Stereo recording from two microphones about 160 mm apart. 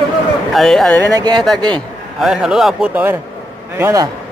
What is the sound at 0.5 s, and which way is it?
Speech, 5° left (ahead or behind).